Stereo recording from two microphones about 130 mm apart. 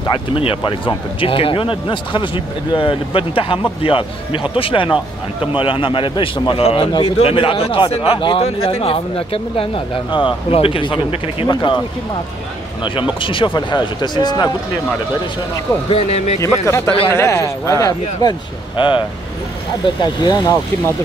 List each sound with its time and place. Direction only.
0.0 s speech: 40° left (ahead or behind)
12.8 s speech: 40° left (ahead or behind)
15.9 s speech: 55° left (ahead or behind)
16.6 s speech: 20° left (ahead or behind)
18.8 s speech: 40° left (ahead or behind)